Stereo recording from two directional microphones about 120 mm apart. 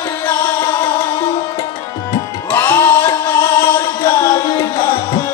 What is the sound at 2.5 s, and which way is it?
Music, 20° left (ahead or behind).